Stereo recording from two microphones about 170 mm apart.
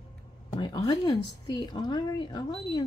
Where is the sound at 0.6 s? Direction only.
25° left (ahead or behind).